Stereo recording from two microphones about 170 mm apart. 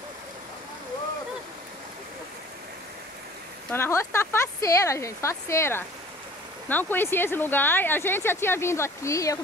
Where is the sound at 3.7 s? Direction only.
15° left (ahead or behind).